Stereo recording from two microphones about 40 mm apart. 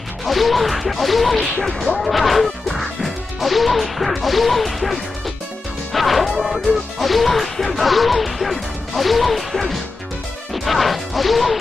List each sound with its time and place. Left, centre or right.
0.2 s music: centre
1.4 s speech: centre
2.0 s music: centre
5.9 s smash: centre
7.0 s music: centre
10.5 s smash: centre